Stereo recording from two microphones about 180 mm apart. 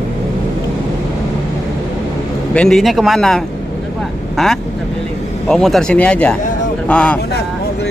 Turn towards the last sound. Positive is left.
turn(degrees=5)  # may be behind; listen again after turning